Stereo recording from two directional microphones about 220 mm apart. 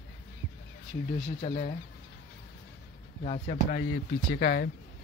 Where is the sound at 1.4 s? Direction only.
30° left (ahead or behind).